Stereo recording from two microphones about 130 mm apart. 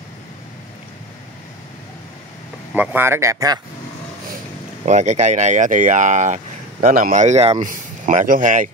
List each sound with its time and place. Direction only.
2.7 s speech: 15° right (ahead or behind)
4.8 s speech: 60° right (ahead or behind)
7.6 s speech: 85° right; by 8.6 s 70° right (ahead or behind)